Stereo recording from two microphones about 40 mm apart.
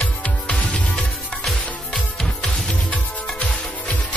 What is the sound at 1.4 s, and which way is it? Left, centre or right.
Music, centre.